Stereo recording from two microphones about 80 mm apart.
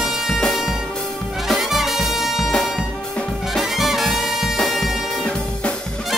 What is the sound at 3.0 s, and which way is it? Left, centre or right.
Music, centre.